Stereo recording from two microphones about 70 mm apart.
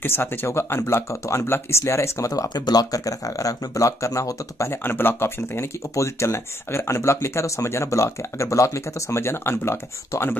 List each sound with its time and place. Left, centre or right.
0.0 s speech: left
2.5 s speech: left
4.8 s speech: left